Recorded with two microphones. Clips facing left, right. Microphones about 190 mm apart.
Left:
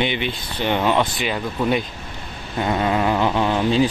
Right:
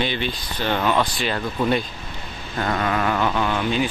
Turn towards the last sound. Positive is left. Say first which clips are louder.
# left 4 dB
turn(degrees=30)  # may be behind; listen again after turning